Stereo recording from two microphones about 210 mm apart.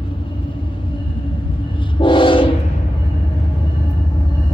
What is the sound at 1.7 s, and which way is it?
Train, 25° left (ahead or behind).